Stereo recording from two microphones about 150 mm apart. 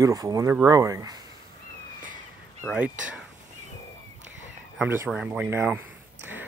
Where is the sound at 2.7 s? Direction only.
5° right (ahead or behind).